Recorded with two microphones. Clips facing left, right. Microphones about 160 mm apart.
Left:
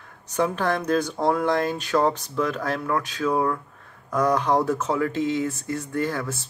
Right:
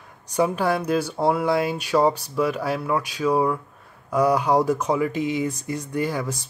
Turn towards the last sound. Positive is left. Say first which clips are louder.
# right 1 dB
turn(degrees=-15)  # may be behind; listen again after turning